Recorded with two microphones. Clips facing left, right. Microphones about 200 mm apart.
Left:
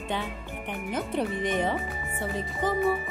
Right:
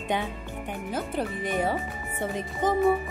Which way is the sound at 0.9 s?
5° right (ahead or behind).